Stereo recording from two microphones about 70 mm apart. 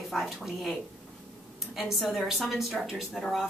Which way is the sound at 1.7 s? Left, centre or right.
Centre.